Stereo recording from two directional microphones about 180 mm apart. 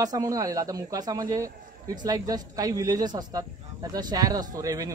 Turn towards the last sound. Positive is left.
turn(degrees=-20)  # may be behind; listen again after turning